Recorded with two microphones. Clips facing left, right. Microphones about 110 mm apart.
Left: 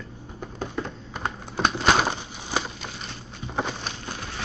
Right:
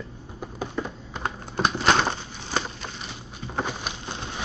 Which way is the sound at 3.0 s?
5° right (ahead or behind).